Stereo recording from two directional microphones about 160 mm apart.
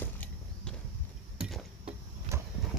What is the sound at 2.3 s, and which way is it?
Vehicle, 15° right (ahead or behind).